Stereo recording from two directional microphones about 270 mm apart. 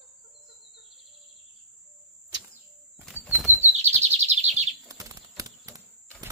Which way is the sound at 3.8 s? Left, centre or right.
Right.